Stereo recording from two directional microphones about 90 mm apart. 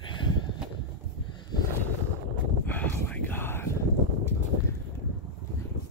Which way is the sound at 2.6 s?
20° left (ahead or behind).